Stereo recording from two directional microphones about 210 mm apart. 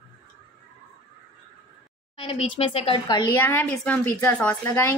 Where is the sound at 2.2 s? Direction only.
25° left (ahead or behind).